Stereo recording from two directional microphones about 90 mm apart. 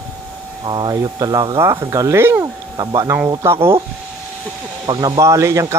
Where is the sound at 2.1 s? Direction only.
30° right (ahead or behind).